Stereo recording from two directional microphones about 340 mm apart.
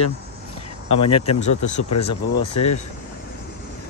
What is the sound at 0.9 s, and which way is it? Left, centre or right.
Speech, left.